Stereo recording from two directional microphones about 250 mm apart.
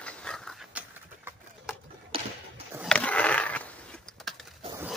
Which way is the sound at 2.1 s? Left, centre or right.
Right.